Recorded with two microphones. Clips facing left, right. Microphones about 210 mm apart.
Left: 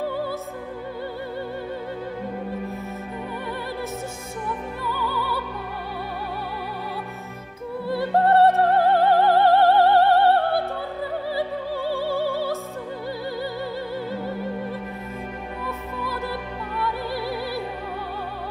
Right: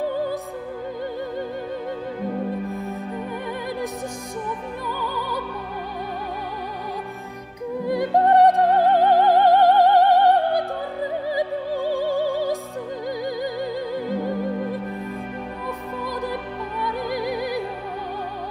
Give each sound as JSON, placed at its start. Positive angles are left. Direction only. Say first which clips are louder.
{"t": 0.0, "sound": "music", "louder": "right 3 dB", "side_deg": -15}
{"t": 2.7, "sound": "music", "louder": "right 3 dB", "side_deg": -15}
{"t": 4.8, "sound": "music", "louder": "left 2 dB", "side_deg": -15}
{"t": 7.8, "sound": "music", "louder": "right 1 dB", "side_deg": -15}
{"t": 13.9, "sound": "music", "louder": "right 4 dB", "side_deg": -15}
{"t": 16.0, "sound": "music", "louder": "right 2 dB", "side_deg": -15}